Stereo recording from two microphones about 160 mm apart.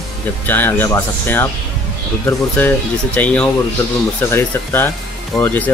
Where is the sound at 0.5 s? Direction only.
10° left (ahead or behind).